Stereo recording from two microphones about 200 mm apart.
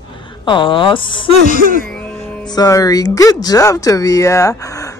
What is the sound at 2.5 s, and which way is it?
Speech, 20° left (ahead or behind).